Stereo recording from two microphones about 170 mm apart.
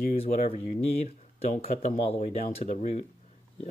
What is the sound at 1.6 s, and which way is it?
Speech, 40° left (ahead or behind).